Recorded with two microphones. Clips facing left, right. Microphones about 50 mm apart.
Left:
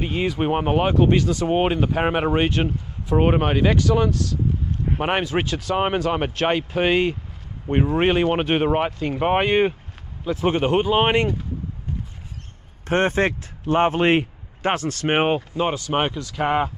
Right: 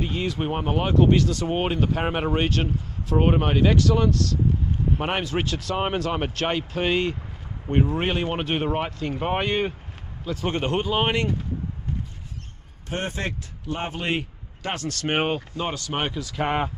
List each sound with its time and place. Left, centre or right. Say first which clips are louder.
0.0 s speech: left 4 dB; left
12.8 s a man's voice: left 10 dB; left; by 16.1 s centre
16.1 s speech: left 3 dB; centre